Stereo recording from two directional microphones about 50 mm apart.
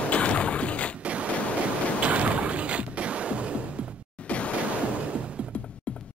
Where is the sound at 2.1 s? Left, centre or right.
Right.